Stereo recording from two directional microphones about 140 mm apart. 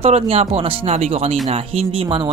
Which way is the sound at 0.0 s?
45° right (ahead or behind).